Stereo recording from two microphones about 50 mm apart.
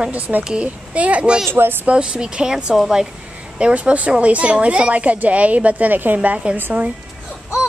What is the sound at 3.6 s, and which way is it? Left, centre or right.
A woman's voice, right.